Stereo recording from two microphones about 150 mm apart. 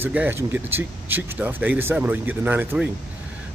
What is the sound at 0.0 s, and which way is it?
Speech, 10° right (ahead or behind).